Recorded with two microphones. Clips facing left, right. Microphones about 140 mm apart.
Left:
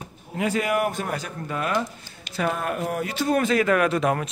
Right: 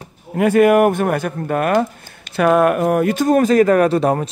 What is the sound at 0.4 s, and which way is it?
Speech, 55° right (ahead or behind).